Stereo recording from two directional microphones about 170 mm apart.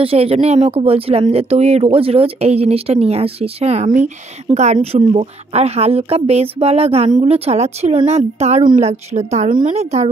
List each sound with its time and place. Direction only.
0.0 s speech: 35° right (ahead or behind)